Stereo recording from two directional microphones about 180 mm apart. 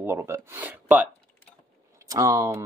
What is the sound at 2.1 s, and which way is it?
Speech, 20° right (ahead or behind).